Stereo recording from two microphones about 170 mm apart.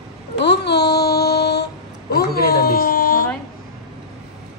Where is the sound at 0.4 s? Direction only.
80° left; by 3.3 s 60° left (ahead or behind).